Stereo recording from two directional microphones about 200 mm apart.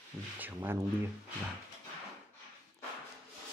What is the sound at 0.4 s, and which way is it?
Speech, 10° right (ahead or behind).